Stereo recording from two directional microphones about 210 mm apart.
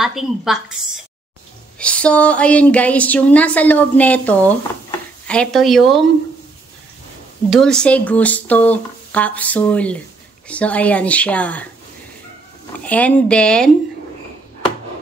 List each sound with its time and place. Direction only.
0.0 s speech: centre (ahead or behind)
1.8 s a woman's voice: 5° left (ahead or behind)
7.4 s a woman's voice: centre (ahead or behind)
12.8 s speech: 5° left (ahead or behind)